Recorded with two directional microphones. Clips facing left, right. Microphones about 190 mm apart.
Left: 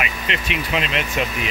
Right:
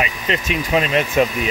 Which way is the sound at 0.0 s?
40° right (ahead or behind).